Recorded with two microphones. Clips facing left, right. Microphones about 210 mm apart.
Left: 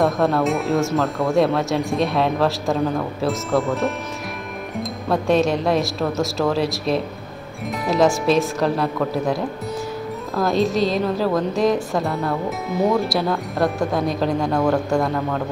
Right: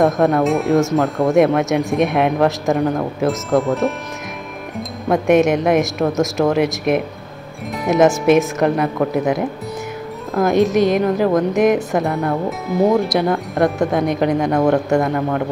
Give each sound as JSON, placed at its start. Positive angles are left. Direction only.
{"t": 0.0, "sound": "speech", "side_deg": -15}
{"t": 0.4, "sound": "speech", "side_deg": 0}
{"t": 1.2, "sound": "speech", "side_deg": -20}
{"t": 3.3, "sound": "speech", "side_deg": 0}
{"t": 5.1, "sound": "speech", "side_deg": -20}
{"t": 10.3, "sound": "speech", "side_deg": -20}
{"t": 12.4, "sound": "speech", "side_deg": 0}
{"t": 13.1, "sound": "speech", "side_deg": -15}
{"t": 13.6, "sound": "speech", "side_deg": 0}
{"t": 13.9, "sound": "speech", "side_deg": -20}
{"t": 14.9, "sound": "speech", "side_deg": -5}